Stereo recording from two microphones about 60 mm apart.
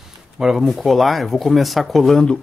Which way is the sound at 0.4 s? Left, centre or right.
Centre.